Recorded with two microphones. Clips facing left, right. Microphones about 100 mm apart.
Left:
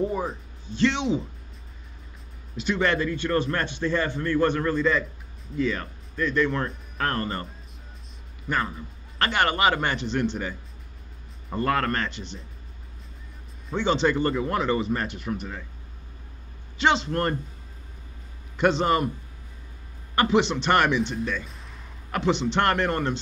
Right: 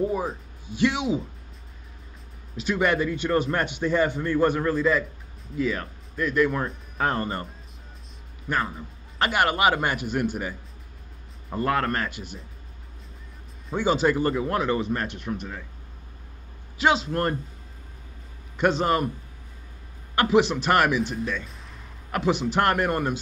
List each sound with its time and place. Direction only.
0.0 s speech: 5° right (ahead or behind)
2.5 s speech: 5° right (ahead or behind)
8.5 s speech: centre (ahead or behind)
11.5 s speech: 5° right (ahead or behind)
13.7 s speech: 5° right (ahead or behind)
16.7 s speech: 5° right (ahead or behind)
18.6 s speech: centre (ahead or behind)
20.2 s a man's voice: 5° right (ahead or behind)